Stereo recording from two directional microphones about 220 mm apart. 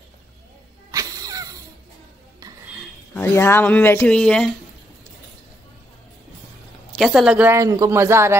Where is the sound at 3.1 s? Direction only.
10° left (ahead or behind).